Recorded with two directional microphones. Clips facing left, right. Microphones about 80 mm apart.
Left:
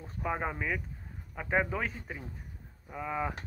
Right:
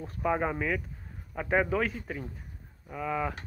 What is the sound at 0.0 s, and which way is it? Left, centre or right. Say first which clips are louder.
Speech: right 5 dB; centre.